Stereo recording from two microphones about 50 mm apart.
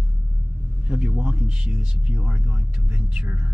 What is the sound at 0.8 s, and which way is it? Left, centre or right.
A man's voice, centre.